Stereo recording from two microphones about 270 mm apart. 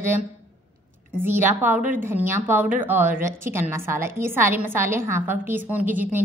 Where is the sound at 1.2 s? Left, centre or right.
Centre.